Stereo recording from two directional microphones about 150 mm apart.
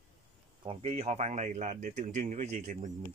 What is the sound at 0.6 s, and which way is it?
Speech, 40° right (ahead or behind).